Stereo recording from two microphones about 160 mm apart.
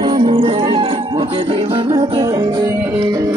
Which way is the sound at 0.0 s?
35° right (ahead or behind).